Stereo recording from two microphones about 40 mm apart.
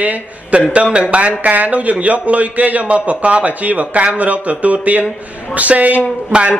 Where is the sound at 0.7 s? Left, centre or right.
Right.